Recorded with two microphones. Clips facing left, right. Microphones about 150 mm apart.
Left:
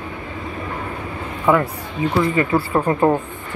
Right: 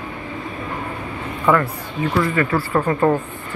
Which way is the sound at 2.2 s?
20° left (ahead or behind).